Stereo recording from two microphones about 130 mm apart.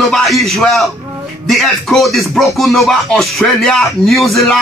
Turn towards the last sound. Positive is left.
turn(degrees=0)  # may be behind; listen again after turning